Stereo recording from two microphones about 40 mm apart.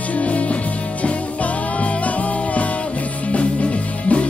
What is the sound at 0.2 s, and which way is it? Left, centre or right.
Music, left.